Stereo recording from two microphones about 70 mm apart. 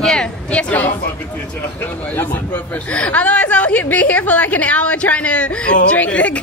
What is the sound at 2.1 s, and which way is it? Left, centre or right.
A woman's voice, left.